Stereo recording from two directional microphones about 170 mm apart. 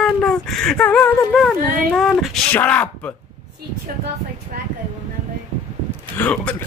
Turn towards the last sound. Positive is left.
turn(degrees=10)  # may be behind; listen again after turning